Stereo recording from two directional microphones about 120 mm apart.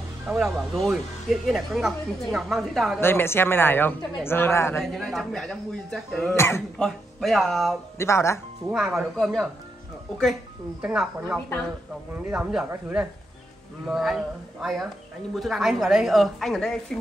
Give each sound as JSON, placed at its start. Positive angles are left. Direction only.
{"t": 0.3, "sound": "speech", "side_deg": -5}
{"t": 3.0, "sound": "a man's voice", "side_deg": 20}
{"t": 4.9, "sound": "speech", "side_deg": 0}
{"t": 6.3, "sound": "a man's voice", "side_deg": 20}
{"t": 6.8, "sound": "speech", "side_deg": 0}
{"t": 8.0, "sound": "a man's voice", "side_deg": 25}
{"t": 8.6, "sound": "speech", "side_deg": -5}
{"t": 10.8, "sound": "speech", "side_deg": -5}